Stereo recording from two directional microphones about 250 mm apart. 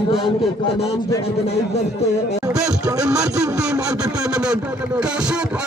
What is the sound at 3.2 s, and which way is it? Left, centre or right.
Speech, centre.